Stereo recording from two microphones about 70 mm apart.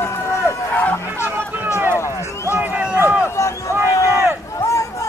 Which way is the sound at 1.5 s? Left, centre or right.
Right.